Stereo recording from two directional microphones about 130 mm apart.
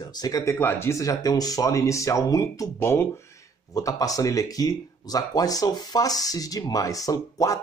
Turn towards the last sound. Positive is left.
turn(degrees=25)  # may be behind; listen again after turning